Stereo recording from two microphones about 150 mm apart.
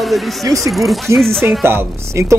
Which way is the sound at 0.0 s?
Centre (ahead or behind).